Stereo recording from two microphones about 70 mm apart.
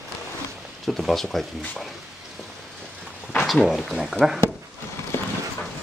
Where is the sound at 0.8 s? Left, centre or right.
Centre.